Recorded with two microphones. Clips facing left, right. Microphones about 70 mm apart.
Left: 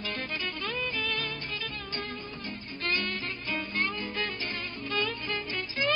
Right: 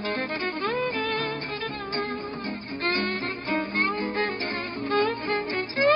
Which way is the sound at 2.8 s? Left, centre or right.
Right.